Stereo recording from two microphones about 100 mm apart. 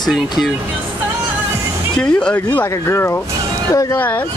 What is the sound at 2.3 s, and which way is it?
Speech, 20° left (ahead or behind).